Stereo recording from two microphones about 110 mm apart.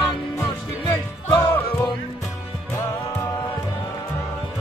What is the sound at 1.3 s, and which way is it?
Music, 15° left (ahead or behind).